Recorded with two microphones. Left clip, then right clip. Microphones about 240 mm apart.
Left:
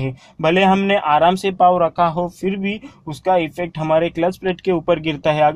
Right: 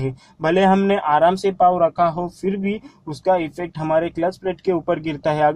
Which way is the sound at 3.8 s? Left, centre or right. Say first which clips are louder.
Left 2 dB; left.